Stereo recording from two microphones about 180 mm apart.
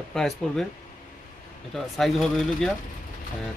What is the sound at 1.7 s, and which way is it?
Speech, centre (ahead or behind).